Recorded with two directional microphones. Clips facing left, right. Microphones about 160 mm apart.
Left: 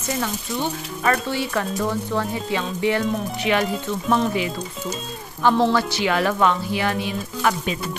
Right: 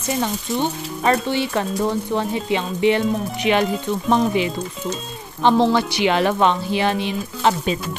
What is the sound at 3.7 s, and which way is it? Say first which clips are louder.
Speech: right 2 dB; centre (ahead or behind).